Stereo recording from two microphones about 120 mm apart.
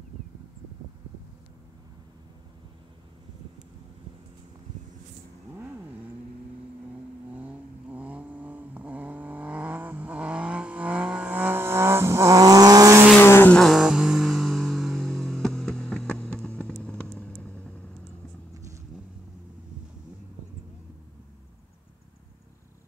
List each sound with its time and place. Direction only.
7.3 s vehicle: 15° right (ahead or behind); by 13.0 s 30° right (ahead or behind)
13.2 s vehicle: 20° left (ahead or behind)
13.6 s a sound: centre (ahead or behind)